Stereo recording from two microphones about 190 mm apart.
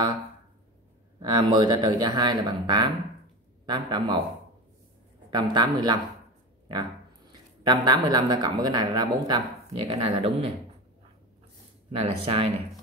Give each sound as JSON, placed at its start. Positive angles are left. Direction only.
{"t": 1.2, "sound": "speech", "side_deg": -20}
{"t": 5.3, "sound": "speech", "side_deg": -25}
{"t": 7.6, "sound": "speech", "side_deg": -20}
{"t": 11.9, "sound": "speech", "side_deg": -30}